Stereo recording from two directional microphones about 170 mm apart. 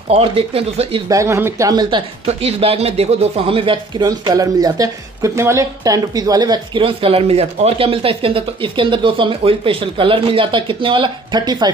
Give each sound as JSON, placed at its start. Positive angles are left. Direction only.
{"t": 0.1, "sound": "speech", "side_deg": -35}
{"t": 1.0, "sound": "speech", "side_deg": -20}